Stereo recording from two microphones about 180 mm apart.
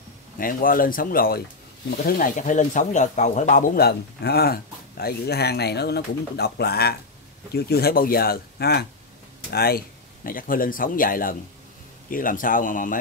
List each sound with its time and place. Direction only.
0.4 s speech: 50° left (ahead or behind)